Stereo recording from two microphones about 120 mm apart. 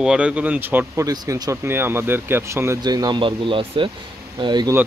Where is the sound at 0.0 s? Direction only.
5° right (ahead or behind).